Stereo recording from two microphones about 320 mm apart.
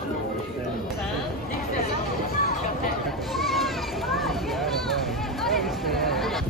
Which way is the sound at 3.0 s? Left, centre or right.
Centre.